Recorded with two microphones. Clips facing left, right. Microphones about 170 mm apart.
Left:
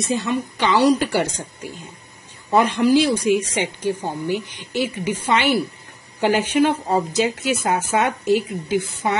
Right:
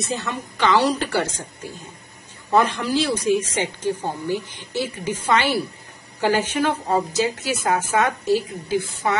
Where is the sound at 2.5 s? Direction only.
15° left (ahead or behind).